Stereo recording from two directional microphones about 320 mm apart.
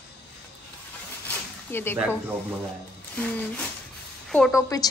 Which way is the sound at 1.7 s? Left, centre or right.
Centre.